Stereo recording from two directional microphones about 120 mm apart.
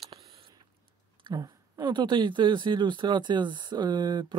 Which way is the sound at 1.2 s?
35° right (ahead or behind).